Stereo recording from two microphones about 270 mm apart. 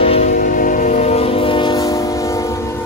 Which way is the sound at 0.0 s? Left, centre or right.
Left.